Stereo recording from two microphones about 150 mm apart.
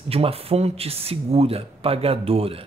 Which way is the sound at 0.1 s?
40° right (ahead or behind).